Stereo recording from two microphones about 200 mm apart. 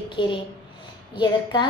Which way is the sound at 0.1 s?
25° left (ahead or behind).